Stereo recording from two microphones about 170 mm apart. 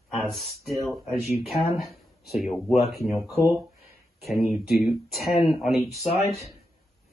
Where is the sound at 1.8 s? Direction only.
Centre (ahead or behind).